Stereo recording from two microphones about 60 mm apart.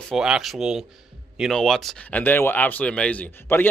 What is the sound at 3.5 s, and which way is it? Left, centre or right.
Speech, left.